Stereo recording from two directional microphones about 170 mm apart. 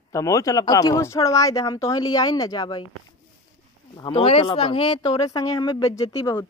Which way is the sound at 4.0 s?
30° left (ahead or behind).